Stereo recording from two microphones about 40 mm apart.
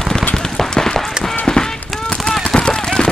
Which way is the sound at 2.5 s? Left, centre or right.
Left.